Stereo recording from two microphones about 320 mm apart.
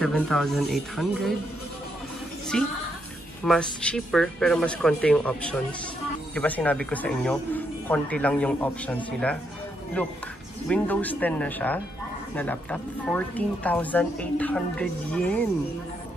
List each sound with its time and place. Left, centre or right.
0.0 s speech: centre
2.5 s speech: centre